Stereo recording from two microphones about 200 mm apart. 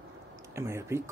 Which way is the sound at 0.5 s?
15° right (ahead or behind).